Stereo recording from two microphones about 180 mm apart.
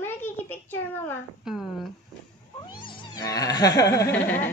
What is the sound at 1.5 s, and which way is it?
Speech, centre (ahead or behind).